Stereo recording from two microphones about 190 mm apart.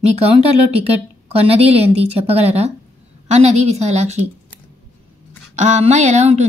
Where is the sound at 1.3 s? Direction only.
30° right (ahead or behind).